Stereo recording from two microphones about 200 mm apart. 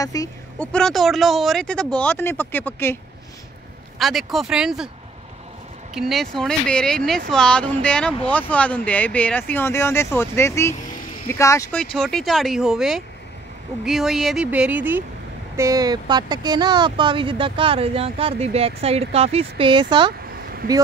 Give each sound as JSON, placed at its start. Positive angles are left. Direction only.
{"t": 0.0, "sound": "speech", "side_deg": 15}
{"t": 0.6, "sound": "speech", "side_deg": 5}
{"t": 4.0, "sound": "speech", "side_deg": 0}
{"t": 5.9, "sound": "speech", "side_deg": 0}
{"t": 11.8, "sound": "speech", "side_deg": 5}
{"t": 20.6, "sound": "speech", "side_deg": -45}